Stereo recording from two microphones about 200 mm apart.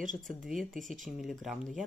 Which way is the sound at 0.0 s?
40° right (ahead or behind).